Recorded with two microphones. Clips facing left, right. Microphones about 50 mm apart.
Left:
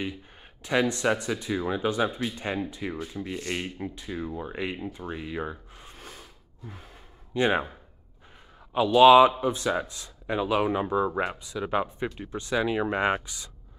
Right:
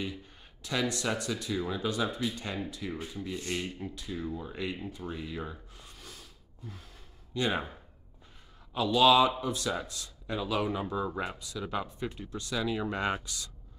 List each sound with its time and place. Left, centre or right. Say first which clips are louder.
0.6 s speech: left 7 dB; left
2.9 s sanding: left 4 dB; centre
3.3 s speech: left 1 dB; left
4.9 s a sound: left 4 dB; left
6.7 s gasp: left 4 dB; left
8.7 s speech: left 7 dB; left